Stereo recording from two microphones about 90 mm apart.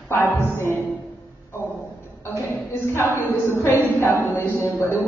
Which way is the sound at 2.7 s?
25° left (ahead or behind).